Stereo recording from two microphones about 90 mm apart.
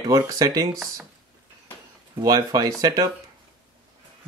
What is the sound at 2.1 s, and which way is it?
Speech, 45° right (ahead or behind).